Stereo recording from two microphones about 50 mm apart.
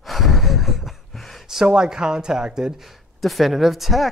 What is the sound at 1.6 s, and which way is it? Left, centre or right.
Speech, centre.